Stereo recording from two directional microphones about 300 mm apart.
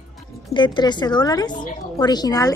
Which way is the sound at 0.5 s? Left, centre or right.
Centre.